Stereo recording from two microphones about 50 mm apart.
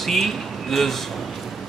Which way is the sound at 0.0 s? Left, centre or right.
Centre.